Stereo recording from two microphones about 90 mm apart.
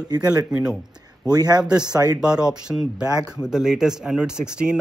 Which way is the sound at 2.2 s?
10° right (ahead or behind).